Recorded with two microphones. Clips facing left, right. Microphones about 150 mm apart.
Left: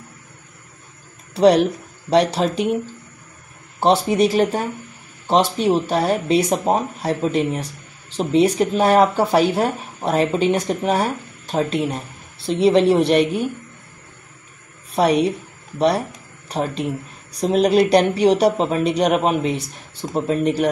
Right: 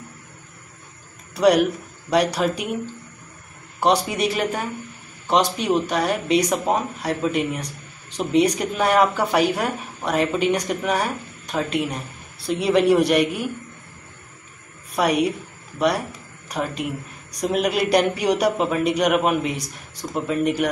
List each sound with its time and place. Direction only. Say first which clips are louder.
1.3 s speech: left 3 dB; 30° left (ahead or behind)
3.8 s speech: left 4 dB; 30° left (ahead or behind)
15.0 s speech: left 3 dB; 30° left (ahead or behind)
16.4 s a man's voice: left 3 dB; 30° left (ahead or behind)